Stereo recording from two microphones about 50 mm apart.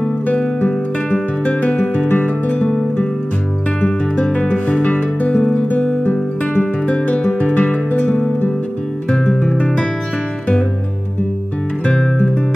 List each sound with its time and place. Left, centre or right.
0.4 s music: left
1.7 s music: left
3.8 s music: left
6.0 s music: left
9.1 s music: centre